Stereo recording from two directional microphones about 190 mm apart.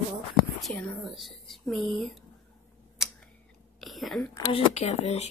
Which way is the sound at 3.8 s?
Centre (ahead or behind).